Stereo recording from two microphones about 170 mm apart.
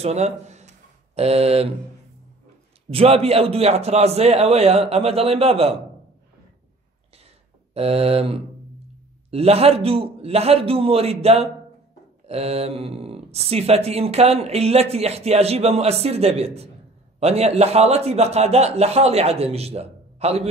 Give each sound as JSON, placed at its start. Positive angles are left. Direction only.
{"t": 0.0, "sound": "speech", "side_deg": -40}
{"t": 2.9, "sound": "a man's voice", "side_deg": -35}
{"t": 7.7, "sound": "a man's voice", "side_deg": -35}
{"t": 12.3, "sound": "a sound", "side_deg": -35}
{"t": 13.5, "sound": "a man's voice", "side_deg": -35}